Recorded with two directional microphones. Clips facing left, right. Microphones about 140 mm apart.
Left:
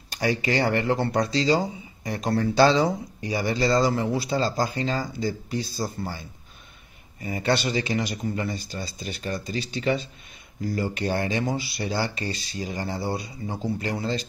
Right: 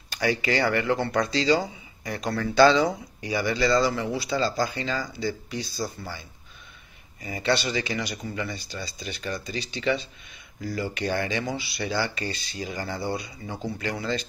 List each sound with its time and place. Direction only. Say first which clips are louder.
0.1 s speech: left 1 dB; 35° left (ahead or behind)
7.2 s speech: left 1 dB; 40° left (ahead or behind)